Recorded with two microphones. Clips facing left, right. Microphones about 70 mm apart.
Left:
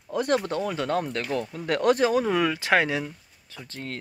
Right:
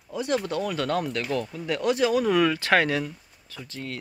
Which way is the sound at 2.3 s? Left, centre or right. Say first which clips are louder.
Right 2 dB; centre.